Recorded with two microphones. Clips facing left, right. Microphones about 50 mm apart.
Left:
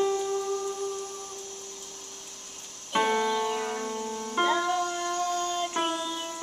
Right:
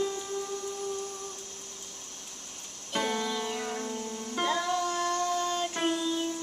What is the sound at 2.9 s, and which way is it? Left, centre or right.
Music, left.